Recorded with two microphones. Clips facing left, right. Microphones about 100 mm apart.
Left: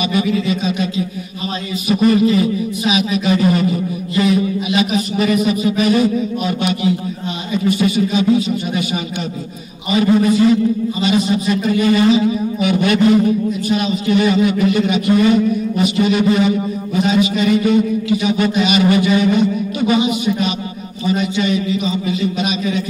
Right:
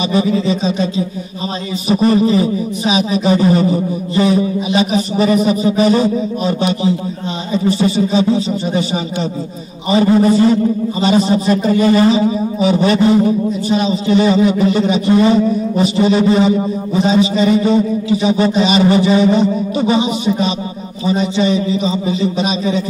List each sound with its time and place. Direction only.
0.1 s a man's voice: 30° right (ahead or behind)